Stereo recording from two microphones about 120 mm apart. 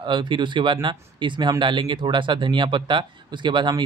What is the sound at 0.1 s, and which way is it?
Speech, 40° right (ahead or behind).